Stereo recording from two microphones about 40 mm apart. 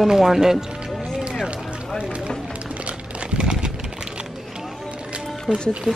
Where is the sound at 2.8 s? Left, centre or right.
Right.